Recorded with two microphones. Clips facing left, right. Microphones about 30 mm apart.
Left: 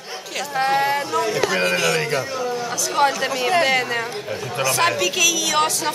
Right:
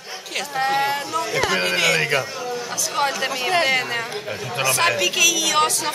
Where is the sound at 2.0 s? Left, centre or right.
Centre.